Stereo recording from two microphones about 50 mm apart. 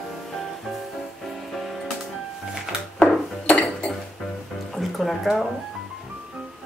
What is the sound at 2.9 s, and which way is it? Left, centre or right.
Dishes, left.